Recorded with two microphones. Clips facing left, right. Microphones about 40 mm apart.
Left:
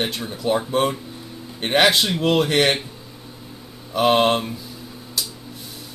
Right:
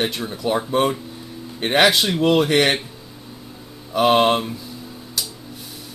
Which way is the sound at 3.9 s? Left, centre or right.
Centre.